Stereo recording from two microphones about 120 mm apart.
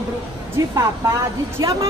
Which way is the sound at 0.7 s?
25° right (ahead or behind).